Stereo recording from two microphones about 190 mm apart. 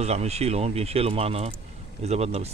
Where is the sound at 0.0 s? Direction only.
35° right (ahead or behind).